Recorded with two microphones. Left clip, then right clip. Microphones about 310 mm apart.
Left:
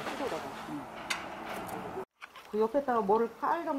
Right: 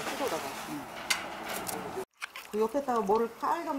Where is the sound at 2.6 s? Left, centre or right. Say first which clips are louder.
Even; left.